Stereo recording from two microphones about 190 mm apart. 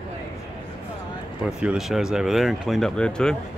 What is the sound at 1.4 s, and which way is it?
Speech, 5° right (ahead or behind).